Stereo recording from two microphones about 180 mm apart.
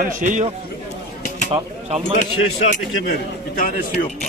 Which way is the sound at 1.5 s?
35° right (ahead or behind).